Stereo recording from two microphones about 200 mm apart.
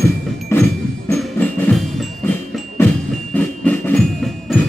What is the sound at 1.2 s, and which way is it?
Percussion, centre (ahead or behind).